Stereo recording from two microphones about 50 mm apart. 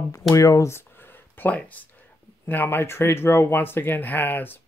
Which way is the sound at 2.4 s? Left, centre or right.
Left.